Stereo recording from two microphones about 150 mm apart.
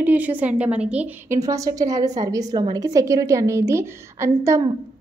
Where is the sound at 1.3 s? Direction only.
20° right (ahead or behind).